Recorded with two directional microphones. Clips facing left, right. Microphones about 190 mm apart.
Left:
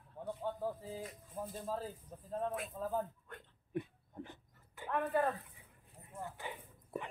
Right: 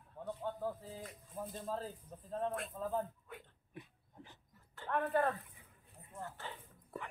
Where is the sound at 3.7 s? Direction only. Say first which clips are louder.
Left 14 dB; 60° left (ahead or behind).